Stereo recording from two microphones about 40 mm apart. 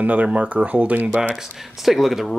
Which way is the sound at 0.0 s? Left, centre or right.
Right.